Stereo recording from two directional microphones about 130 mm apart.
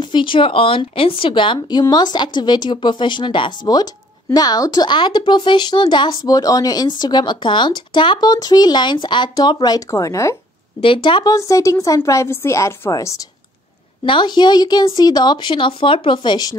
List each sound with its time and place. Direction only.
0.0 s speech: 40° left (ahead or behind)
10.8 s speech: 40° left (ahead or behind)
11.3 s a woman's voice: 25° left (ahead or behind)
14.0 s speech: 40° left (ahead or behind)